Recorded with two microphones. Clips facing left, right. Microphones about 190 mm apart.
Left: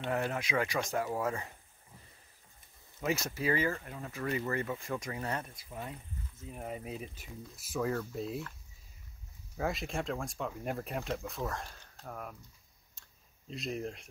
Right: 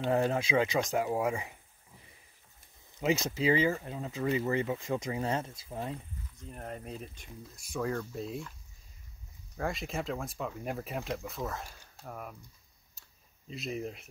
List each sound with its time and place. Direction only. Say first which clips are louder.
0.0 s speech: right 5 dB; 30° right (ahead or behind); by 1.6 s 15° right (ahead or behind)
3.0 s speech: right 4 dB; 20° right (ahead or behind)
6.3 s speech: left 1 dB; 5° left (ahead or behind)
9.6 s speech: even; centre (ahead or behind)
13.5 s speech: right 1 dB; centre (ahead or behind)